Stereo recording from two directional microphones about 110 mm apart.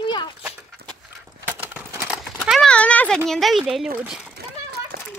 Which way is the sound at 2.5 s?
5° left (ahead or behind).